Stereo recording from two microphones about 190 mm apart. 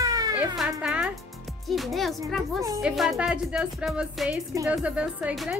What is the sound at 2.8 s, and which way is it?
Speech, centre (ahead or behind).